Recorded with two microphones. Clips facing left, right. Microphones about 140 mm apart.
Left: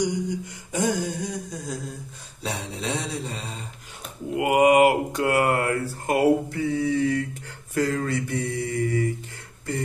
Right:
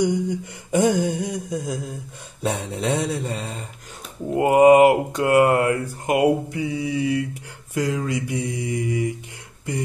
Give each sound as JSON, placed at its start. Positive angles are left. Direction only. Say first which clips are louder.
{"t": 0.0, "sound": "mantra", "louder": "right 4 dB", "side_deg": -60}
{"t": 4.4, "sound": "speech", "louder": "right 5 dB", "side_deg": -30}
{"t": 7.7, "sound": "mantra", "louder": "right 1 dB", "side_deg": -15}